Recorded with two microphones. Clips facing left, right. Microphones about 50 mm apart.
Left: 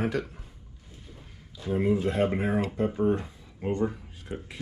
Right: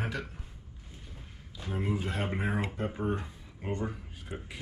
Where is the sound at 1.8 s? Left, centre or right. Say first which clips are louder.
Left 9 dB; centre.